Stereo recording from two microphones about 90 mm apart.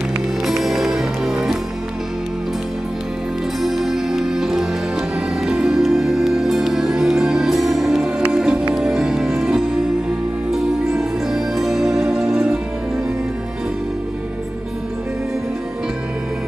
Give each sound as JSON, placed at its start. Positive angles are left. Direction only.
{"t": 0.5, "sound": "music", "side_deg": -5}
{"t": 3.6, "sound": "music", "side_deg": -5}